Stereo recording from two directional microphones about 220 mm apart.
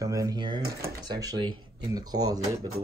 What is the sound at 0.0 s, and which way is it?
Speech, 15° right (ahead or behind).